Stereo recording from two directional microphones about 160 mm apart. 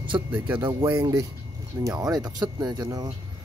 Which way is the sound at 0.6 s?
25° right (ahead or behind).